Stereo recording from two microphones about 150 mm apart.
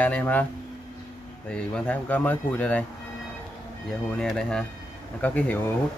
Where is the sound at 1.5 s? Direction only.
10° left (ahead or behind).